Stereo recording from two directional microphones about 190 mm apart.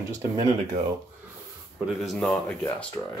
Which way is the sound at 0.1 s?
15° right (ahead or behind).